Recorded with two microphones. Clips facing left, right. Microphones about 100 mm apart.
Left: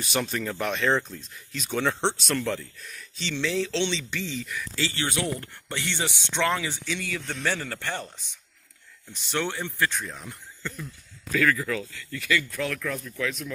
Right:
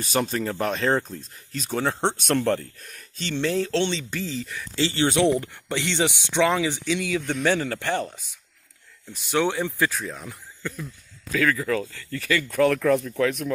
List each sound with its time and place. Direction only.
0.0 s speech: 40° right (ahead or behind); by 8.1 s 15° right (ahead or behind)
9.1 s speech: 10° right (ahead or behind)
9.8 s speech: 5° right (ahead or behind)
11.3 s speech: 15° right (ahead or behind)
11.6 s speech: 40° right (ahead or behind)
12.4 s speech: 60° right (ahead or behind)